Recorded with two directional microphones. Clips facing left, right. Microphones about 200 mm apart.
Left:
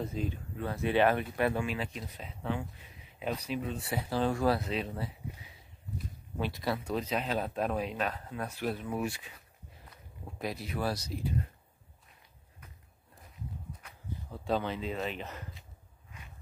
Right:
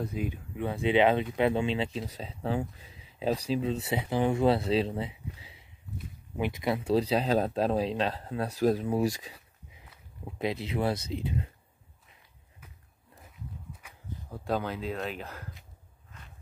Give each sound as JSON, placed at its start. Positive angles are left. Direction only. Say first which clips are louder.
{"t": 0.1, "sound": "speech", "louder": "right 2 dB", "side_deg": -15}
{"t": 10.4, "sound": "speech", "louder": "right 5 dB", "side_deg": -25}
{"t": 13.8, "sound": "speech", "louder": "even", "side_deg": -10}